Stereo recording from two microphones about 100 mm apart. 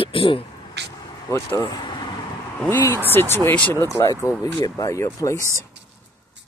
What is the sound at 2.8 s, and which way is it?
Speech, 25° left (ahead or behind).